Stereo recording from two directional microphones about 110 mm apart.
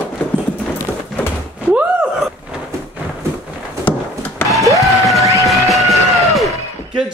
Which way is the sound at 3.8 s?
15° left (ahead or behind).